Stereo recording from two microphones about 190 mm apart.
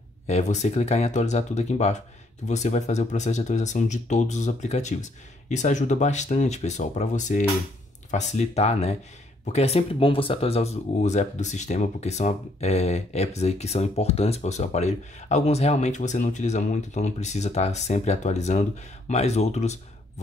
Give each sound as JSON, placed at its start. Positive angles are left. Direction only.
{"t": 0.3, "sound": "speech", "side_deg": 35}